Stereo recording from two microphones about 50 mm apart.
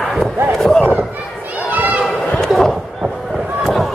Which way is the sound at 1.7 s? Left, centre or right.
Right.